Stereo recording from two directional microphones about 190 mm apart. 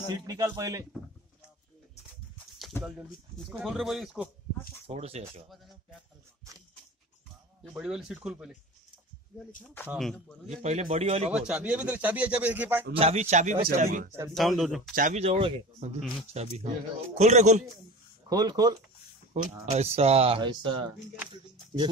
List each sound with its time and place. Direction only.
0.1 s speech: 20° right (ahead or behind)
3.3 s speech: centre (ahead or behind)
4.8 s speech: 30° right (ahead or behind)
7.6 s speech: 5° right (ahead or behind)
10.5 s speech: 35° right (ahead or behind)
11.3 s speech: 5° right (ahead or behind)
12.9 s speech: 35° right (ahead or behind)
14.3 s speech: centre (ahead or behind)
15.0 s speech: 40° right (ahead or behind)
18.3 s speech: 20° right (ahead or behind)
19.3 s speech: 35° right (ahead or behind)